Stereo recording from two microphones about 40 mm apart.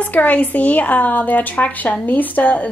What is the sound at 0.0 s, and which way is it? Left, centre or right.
A woman's voice, left.